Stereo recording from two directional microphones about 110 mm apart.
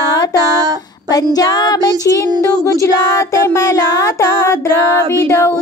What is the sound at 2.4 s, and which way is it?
Speech, 25° left (ahead or behind).